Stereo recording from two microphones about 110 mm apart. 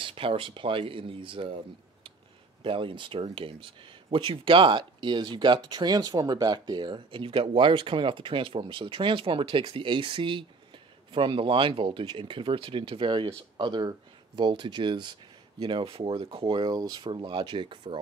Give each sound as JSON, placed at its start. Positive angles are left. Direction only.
{"t": 0.0, "sound": "speech", "side_deg": -55}
{"t": 2.6, "sound": "speech", "side_deg": -50}
{"t": 15.6, "sound": "speech", "side_deg": -55}